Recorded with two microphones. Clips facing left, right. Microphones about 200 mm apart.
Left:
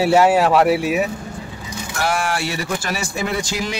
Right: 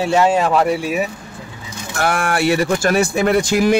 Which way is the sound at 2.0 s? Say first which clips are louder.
Right 3 dB; 55° right (ahead or behind).